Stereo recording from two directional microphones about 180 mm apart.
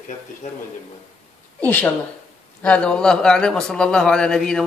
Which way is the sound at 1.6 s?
10° left (ahead or behind).